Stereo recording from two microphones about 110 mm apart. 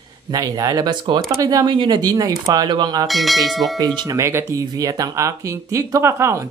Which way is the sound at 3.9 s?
30° right (ahead or behind).